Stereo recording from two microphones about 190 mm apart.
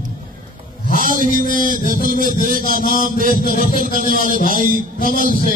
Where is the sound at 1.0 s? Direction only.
45° right (ahead or behind).